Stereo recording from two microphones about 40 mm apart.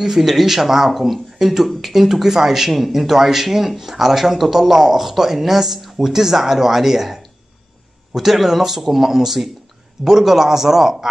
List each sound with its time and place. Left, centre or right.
0.0 s speech: centre
8.2 s speech: centre